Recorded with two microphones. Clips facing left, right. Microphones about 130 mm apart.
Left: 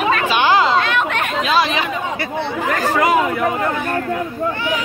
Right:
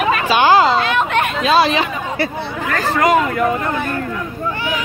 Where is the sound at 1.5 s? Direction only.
30° right (ahead or behind).